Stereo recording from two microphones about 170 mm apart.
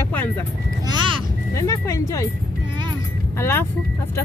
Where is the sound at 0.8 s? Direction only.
25° right (ahead or behind).